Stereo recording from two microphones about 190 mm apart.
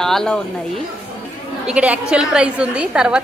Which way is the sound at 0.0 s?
5° left (ahead or behind).